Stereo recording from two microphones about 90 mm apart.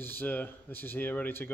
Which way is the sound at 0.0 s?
20° left (ahead or behind).